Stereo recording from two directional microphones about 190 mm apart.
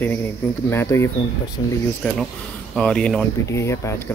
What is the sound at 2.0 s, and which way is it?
Speech, 5° left (ahead or behind).